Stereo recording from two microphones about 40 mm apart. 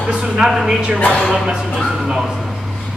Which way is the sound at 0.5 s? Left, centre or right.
Centre.